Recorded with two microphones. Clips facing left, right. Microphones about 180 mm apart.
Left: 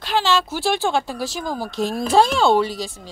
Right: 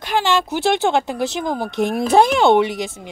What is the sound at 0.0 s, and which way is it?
Speech, 15° right (ahead or behind).